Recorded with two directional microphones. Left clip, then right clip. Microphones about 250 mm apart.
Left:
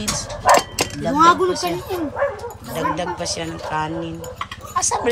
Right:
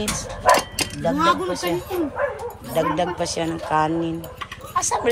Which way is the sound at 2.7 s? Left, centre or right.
Centre.